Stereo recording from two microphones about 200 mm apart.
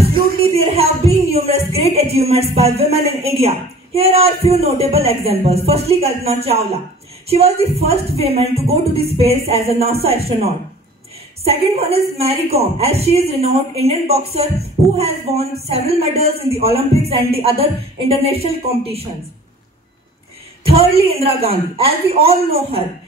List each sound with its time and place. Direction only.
0.0 s music: 30° right (ahead or behind)
1.8 s speech: 30° right (ahead or behind)
20.6 s speech: 30° right (ahead or behind)